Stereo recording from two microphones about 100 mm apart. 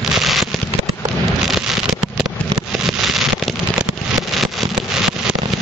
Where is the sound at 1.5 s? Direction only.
5° right (ahead or behind).